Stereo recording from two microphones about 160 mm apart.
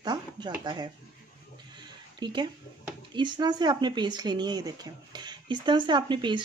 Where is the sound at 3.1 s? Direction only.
30° right (ahead or behind).